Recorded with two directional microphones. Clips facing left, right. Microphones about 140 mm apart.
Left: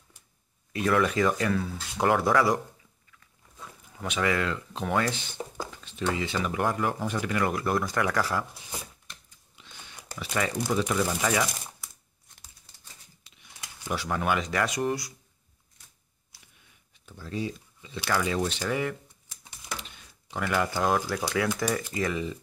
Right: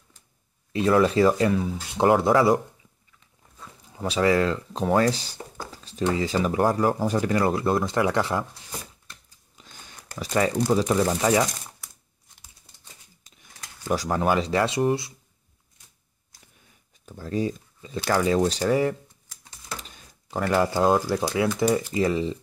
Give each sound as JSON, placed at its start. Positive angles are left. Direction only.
{"t": 0.7, "sound": "speech", "side_deg": -30}
{"t": 1.5, "sound": "speech", "side_deg": -20}
{"t": 3.9, "sound": "speech", "side_deg": -35}
{"t": 9.6, "sound": "biting", "side_deg": -40}
{"t": 10.3, "sound": "speech", "side_deg": -35}
{"t": 13.2, "sound": "speech", "side_deg": -40}
{"t": 16.3, "sound": "a sound", "side_deg": -45}
{"t": 17.0, "sound": "speech", "side_deg": -40}
{"t": 19.8, "sound": "a sound", "side_deg": -35}
{"t": 21.1, "sound": "speech", "side_deg": -20}